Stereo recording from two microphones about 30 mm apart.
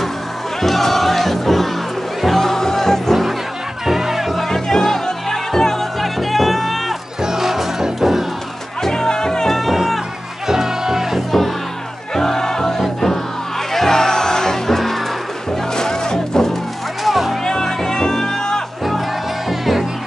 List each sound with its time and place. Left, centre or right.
0.6 s music: centre
3.8 s music: centre
4.5 s music: left
5.9 s music: centre
7.2 s music: centre
8.8 s music: left
9.5 s music: centre
10.5 s music: centre
11.1 s music: centre
12.2 s music: centre
17.0 s music: centre
17.5 s music: centre
19.6 s music: centre